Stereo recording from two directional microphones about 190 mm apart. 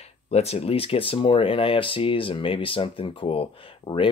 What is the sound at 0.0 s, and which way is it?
Speech, 35° left (ahead or behind).